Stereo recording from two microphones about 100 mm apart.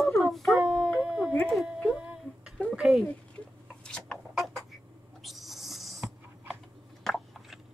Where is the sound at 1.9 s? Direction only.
10° right (ahead or behind).